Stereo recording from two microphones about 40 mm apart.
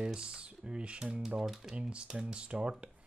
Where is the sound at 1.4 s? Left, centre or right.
Centre.